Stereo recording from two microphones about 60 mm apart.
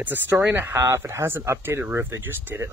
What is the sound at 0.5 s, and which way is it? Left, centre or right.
Speech, right.